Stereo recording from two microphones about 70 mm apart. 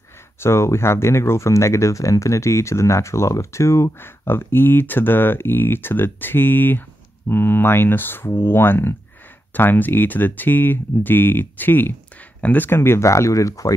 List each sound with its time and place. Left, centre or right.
0.4 s speech: left